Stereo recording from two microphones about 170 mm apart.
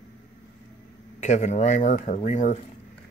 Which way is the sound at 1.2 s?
45° left (ahead or behind).